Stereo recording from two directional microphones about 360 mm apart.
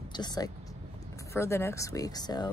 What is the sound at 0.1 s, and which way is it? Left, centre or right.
A woman's voice, centre.